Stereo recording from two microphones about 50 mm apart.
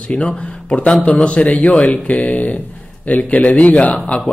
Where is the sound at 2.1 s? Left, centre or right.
Left.